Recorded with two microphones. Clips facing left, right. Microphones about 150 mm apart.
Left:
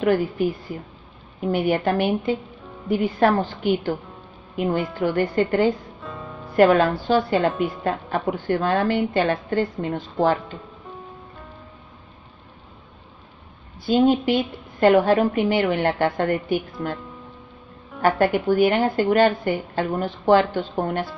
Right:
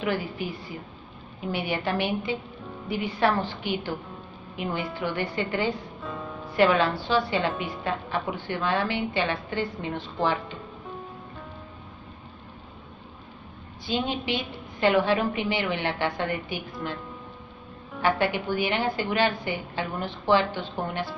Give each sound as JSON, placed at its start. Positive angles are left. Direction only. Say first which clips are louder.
{"t": 0.0, "sound": "a woman's voice", "louder": "left 9 dB", "side_deg": 45}
{"t": 5.9, "sound": "music", "louder": "even", "side_deg": 0}
{"t": 6.5, "sound": "a woman's voice", "louder": "left 6 dB", "side_deg": 50}
{"t": 13.8, "sound": "a woman's voice", "louder": "left 10 dB", "side_deg": 45}
{"t": 18.0, "sound": "a woman's voice", "louder": "left 6 dB", "side_deg": 45}